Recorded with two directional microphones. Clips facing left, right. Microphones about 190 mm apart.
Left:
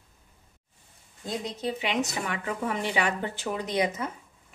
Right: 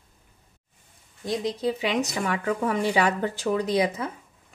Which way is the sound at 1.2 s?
90° right.